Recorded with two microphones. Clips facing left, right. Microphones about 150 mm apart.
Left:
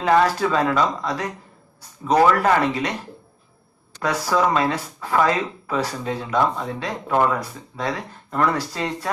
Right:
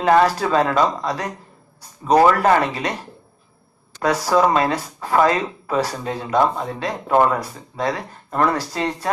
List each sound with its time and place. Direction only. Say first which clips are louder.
0.0 s speech: right 2 dB; 35° right (ahead or behind)
2.1 s speech: right 2 dB; 40° right (ahead or behind)
4.0 s speech: right 3 dB; 40° right (ahead or behind)